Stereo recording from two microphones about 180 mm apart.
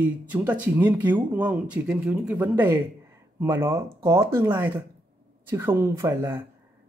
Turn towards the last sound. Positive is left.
turn(degrees=-15)  # may be behind; listen again after turning